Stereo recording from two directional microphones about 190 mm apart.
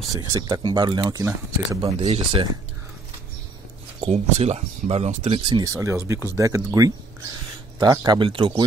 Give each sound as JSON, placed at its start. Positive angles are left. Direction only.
{"t": 0.1, "sound": "speech", "side_deg": -20}
{"t": 2.0, "sound": "speech", "side_deg": -30}
{"t": 4.0, "sound": "speech", "side_deg": -35}
{"t": 5.5, "sound": "speech", "side_deg": -15}